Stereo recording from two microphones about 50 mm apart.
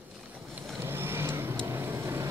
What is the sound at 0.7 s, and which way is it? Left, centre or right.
Vehicle, right.